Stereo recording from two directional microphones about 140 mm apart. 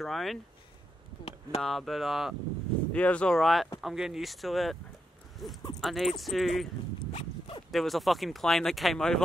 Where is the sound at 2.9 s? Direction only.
10° left (ahead or behind).